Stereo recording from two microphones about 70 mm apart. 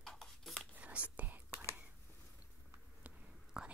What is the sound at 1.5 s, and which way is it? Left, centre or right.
Whispering, left.